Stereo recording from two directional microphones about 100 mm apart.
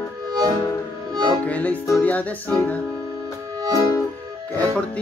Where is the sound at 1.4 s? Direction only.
15° left (ahead or behind).